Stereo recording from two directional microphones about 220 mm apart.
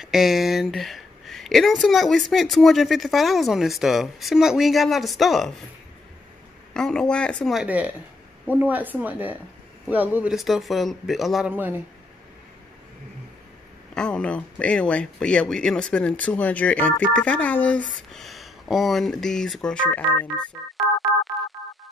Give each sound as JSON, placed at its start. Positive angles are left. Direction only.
{"t": 0.0, "sound": "speech", "side_deg": 0}
{"t": 6.7, "sound": "a woman's voice", "side_deg": 5}
{"t": 13.9, "sound": "speech", "side_deg": 5}